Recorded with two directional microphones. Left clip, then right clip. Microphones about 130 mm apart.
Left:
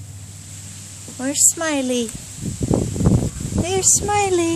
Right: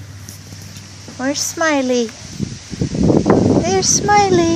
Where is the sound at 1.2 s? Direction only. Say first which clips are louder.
Right 2 dB; 25° left (ahead or behind).